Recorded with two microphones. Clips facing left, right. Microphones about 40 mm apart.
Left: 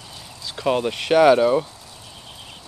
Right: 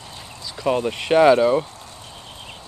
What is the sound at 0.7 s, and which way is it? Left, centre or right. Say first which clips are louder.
Speech: even; centre.